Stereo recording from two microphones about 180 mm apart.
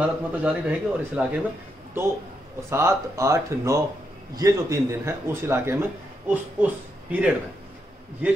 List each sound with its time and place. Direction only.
0.0 s a man's voice: 5° right (ahead or behind)
2.7 s a man's voice: 15° right (ahead or behind)